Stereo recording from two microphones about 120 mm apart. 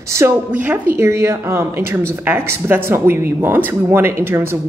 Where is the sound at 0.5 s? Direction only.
10° right (ahead or behind).